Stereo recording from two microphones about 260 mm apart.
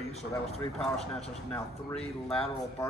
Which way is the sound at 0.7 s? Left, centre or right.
Centre.